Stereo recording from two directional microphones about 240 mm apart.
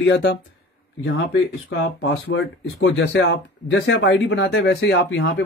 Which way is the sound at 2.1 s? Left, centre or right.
Left.